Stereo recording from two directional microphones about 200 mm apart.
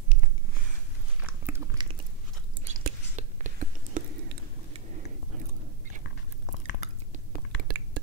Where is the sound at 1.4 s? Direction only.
15° right (ahead or behind).